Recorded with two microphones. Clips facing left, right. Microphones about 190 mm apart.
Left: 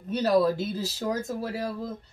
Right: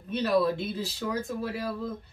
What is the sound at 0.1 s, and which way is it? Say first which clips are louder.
A woman's voice: left 3 dB; 40° left (ahead or behind).